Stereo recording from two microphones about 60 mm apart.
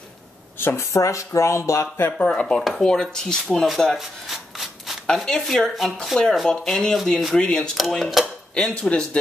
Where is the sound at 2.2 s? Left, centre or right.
Centre.